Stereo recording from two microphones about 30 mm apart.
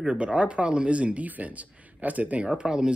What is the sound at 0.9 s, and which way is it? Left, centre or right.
Speech, right.